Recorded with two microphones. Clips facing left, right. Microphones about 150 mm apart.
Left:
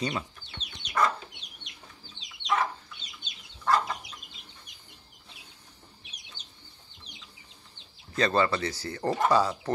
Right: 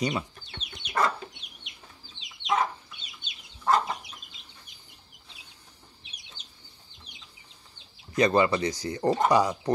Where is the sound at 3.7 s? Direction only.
25° right (ahead or behind).